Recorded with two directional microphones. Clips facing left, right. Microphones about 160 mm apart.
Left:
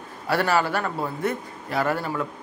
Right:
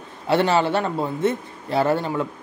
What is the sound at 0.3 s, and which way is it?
A man's voice, 25° right (ahead or behind).